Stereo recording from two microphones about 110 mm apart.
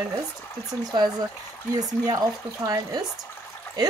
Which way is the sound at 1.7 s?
35° right (ahead or behind).